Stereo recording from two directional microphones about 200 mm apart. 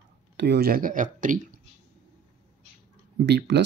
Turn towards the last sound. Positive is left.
turn(degrees=-60)  # may be behind; listen again after turning